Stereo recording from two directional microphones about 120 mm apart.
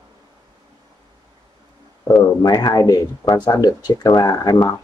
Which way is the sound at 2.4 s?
35° left (ahead or behind).